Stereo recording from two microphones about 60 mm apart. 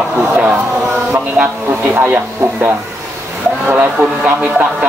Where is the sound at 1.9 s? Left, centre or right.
Right.